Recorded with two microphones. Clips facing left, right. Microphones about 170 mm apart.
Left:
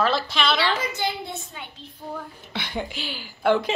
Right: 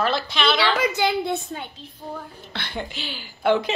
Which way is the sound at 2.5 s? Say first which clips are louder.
Left 2 dB; 10° left (ahead or behind).